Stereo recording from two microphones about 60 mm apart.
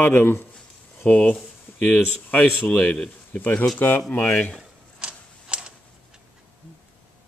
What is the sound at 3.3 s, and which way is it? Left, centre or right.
A man's voice, left.